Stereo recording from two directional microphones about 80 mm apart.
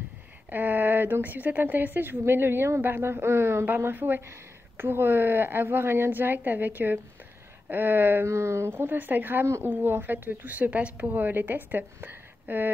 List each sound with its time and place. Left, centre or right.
0.5 s speech: right